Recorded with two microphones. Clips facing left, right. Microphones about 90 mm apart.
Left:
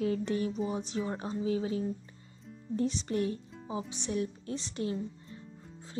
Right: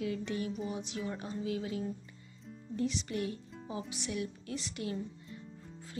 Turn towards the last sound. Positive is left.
turn(degrees=30)  # may be behind; listen again after turning